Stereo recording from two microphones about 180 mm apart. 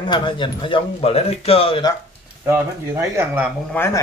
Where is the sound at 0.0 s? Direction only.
25° left (ahead or behind).